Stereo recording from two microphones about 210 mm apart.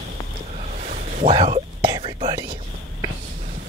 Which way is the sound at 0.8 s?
35° right (ahead or behind).